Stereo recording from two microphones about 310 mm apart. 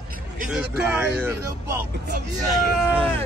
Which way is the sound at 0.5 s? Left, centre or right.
Centre.